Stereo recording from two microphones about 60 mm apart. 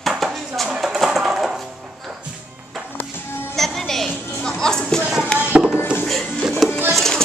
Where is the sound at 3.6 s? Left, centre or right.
Centre.